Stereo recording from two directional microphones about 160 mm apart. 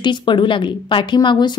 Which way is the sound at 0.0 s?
30° left (ahead or behind).